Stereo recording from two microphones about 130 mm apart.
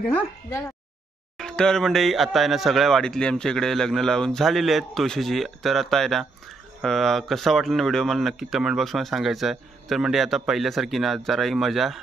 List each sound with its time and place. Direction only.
0.1 s speech: 20° left (ahead or behind)
1.4 s speech: 5° left (ahead or behind)